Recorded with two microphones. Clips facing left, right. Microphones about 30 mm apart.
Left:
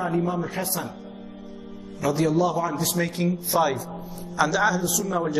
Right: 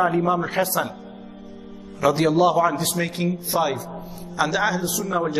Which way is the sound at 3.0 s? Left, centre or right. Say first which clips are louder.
Right 1 dB; right.